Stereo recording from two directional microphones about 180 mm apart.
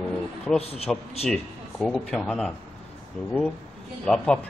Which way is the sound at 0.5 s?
35° left (ahead or behind).